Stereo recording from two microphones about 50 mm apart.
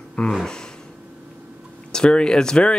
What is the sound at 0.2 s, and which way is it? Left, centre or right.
Speech, centre.